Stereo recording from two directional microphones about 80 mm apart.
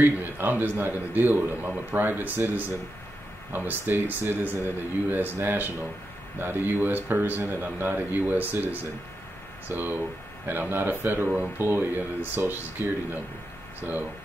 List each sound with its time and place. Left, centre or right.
0.0 s a man's voice: right